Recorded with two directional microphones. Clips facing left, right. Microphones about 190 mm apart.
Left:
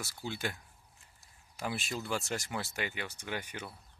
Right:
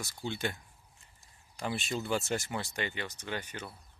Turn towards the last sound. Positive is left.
turn(degrees=10)  # may be behind; listen again after turning